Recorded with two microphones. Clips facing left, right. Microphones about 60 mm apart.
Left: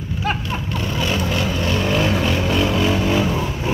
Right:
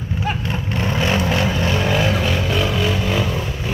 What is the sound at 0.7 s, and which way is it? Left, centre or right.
Vehicle, right.